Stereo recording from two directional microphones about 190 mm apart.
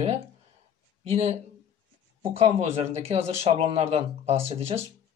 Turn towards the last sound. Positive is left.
turn(degrees=-35)  # may be behind; listen again after turning